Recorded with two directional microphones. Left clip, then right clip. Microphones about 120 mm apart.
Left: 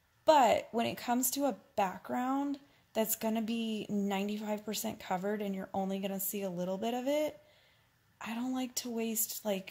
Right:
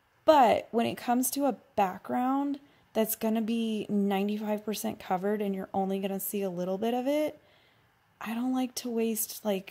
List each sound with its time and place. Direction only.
0.2 s a woman's voice: 45° right (ahead or behind)